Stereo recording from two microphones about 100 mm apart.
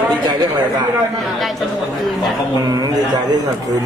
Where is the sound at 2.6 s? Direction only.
40° right (ahead or behind).